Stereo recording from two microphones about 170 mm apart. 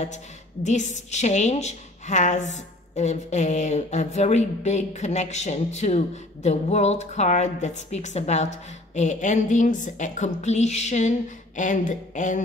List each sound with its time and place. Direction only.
0.7 s a woman's voice: 45° left (ahead or behind)